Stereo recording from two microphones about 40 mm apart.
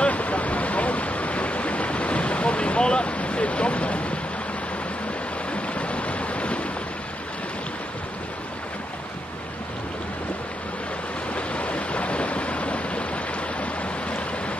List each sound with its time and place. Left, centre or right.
0.0 s waves: left
5.5 s boat: left
11.3 s waves: left